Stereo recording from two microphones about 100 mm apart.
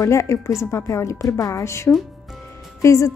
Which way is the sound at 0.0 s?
30° left (ahead or behind).